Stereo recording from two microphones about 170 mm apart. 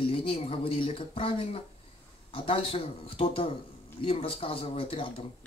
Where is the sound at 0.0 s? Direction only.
35° left (ahead or behind).